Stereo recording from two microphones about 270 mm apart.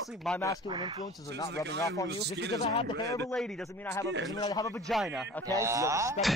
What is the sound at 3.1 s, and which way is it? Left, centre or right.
A man's voice, centre.